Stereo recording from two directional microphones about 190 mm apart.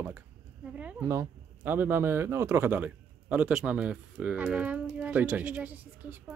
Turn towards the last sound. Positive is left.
turn(degrees=-10)  # may be behind; listen again after turning